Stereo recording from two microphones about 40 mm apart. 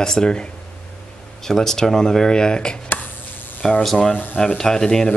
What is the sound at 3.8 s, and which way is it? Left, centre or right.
Speech, centre.